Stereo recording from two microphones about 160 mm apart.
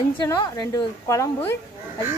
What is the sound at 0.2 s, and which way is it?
A woman's voice, 25° left (ahead or behind).